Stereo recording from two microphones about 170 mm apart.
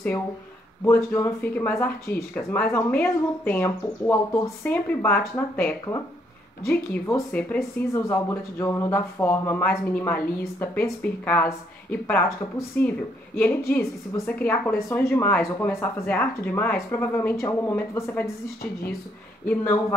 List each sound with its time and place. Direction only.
0.8 s speech: 15° left (ahead or behind)
18.6 s a woman's voice: 65° left (ahead or behind)
19.4 s speech: 10° left (ahead or behind)